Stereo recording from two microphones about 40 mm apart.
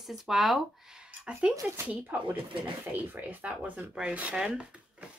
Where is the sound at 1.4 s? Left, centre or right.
Right.